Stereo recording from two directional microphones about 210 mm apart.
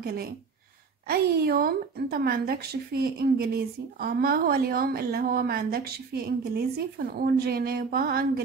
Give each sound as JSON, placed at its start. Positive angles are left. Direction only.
{"t": 0.0, "sound": "a woman's voice", "side_deg": -45}